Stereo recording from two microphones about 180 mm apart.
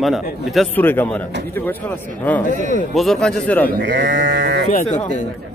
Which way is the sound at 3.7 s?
75° right (ahead or behind).